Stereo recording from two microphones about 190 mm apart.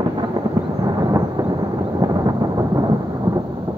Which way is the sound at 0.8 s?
20° right (ahead or behind).